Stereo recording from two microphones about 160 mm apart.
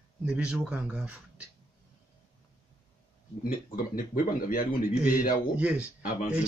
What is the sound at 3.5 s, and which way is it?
A man's voice, 60° left (ahead or behind).